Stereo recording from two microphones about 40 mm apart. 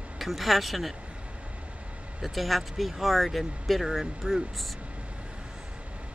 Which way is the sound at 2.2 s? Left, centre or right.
Centre.